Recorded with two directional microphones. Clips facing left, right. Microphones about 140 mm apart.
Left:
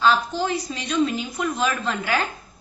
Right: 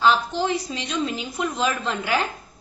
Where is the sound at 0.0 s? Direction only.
20° right (ahead or behind).